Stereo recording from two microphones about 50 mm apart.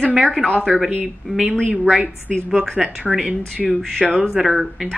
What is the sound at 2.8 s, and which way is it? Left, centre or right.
Speech, centre.